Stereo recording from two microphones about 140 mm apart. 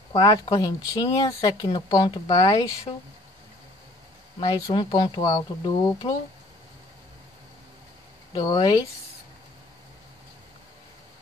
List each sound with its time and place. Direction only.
0.2 s speech: 25° left (ahead or behind)
4.4 s speech: 30° left (ahead or behind)
8.4 s speech: 30° left (ahead or behind)